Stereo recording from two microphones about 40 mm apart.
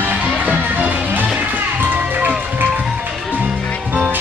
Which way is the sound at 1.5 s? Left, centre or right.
Right.